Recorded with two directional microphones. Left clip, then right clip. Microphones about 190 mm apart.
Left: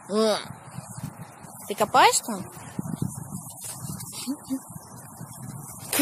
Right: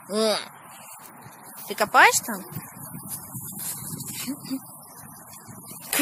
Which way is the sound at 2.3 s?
5° right (ahead or behind).